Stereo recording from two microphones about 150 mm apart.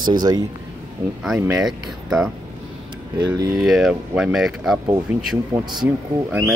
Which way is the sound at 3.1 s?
25° right (ahead or behind).